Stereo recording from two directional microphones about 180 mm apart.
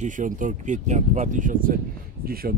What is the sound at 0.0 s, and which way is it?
Speech, 45° right (ahead or behind).